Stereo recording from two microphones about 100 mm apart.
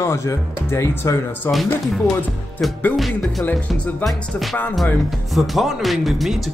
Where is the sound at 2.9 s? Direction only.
Centre (ahead or behind).